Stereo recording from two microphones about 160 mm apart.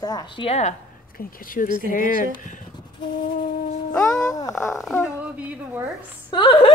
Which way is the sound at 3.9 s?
5° left (ahead or behind).